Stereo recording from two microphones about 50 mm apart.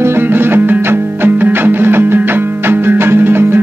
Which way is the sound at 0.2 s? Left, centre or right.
Right.